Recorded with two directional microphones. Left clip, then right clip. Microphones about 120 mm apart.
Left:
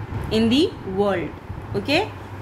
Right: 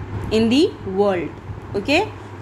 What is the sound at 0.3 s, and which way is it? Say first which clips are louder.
A woman's voice: right 3 dB; 30° right (ahead or behind).